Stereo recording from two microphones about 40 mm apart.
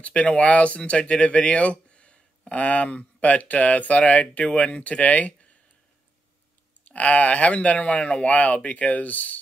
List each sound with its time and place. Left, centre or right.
0.0 s speech: left
6.9 s speech: left